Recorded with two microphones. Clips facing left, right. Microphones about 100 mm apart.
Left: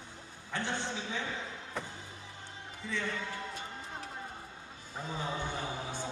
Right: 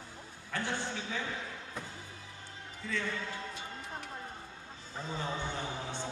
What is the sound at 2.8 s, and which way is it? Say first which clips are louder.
Speech: right 1 dB; 20° left (ahead or behind).